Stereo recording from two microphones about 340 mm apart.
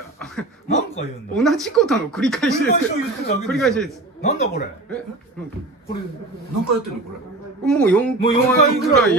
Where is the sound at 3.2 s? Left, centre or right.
Left.